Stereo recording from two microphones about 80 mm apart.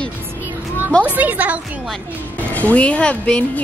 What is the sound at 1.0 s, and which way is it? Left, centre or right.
Speech, centre.